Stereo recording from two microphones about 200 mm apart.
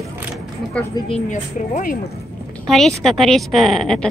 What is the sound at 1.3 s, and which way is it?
Speech, 40° left (ahead or behind).